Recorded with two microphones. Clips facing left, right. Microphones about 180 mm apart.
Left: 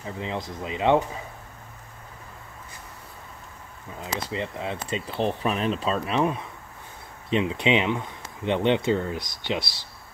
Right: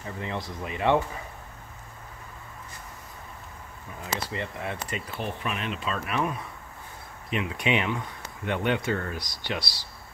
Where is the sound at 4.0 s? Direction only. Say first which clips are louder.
Left 2 dB; 20° left (ahead or behind).